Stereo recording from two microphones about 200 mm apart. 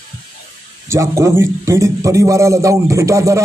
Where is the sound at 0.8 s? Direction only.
15° right (ahead or behind).